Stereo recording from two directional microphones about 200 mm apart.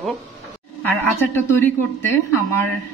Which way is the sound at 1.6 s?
10° left (ahead or behind).